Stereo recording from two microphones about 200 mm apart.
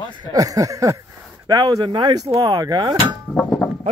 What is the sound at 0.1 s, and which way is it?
Speech, 20° right (ahead or behind).